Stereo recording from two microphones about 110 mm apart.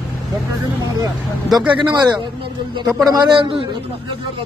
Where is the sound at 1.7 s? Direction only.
45° right (ahead or behind).